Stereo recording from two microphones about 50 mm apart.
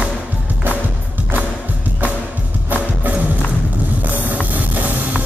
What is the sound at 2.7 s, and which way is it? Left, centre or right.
Music, right.